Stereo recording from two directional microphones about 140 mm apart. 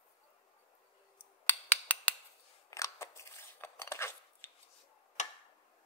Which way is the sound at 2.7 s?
20° left (ahead or behind).